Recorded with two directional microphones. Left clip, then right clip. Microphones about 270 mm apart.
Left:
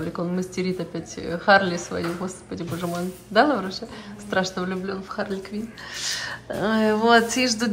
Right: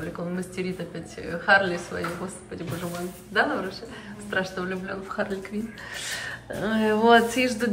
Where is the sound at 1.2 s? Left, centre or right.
Centre.